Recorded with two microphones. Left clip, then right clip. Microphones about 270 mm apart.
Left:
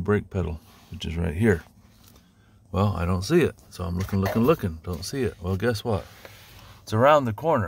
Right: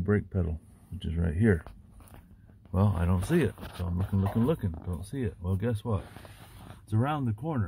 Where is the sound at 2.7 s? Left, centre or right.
Centre.